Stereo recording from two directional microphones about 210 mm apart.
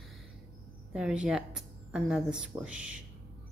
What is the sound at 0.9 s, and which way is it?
A woman's voice, 5° right (ahead or behind).